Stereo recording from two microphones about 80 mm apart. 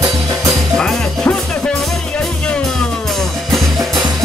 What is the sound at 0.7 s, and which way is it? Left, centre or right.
Music, centre.